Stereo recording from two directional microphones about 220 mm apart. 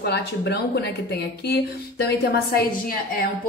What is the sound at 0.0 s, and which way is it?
A woman's voice, 50° left (ahead or behind).